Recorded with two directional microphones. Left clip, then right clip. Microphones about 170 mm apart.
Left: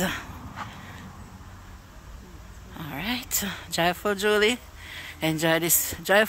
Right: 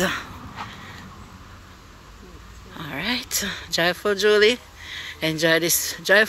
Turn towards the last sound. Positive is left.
turn(degrees=15)  # may be behind; listen again after turning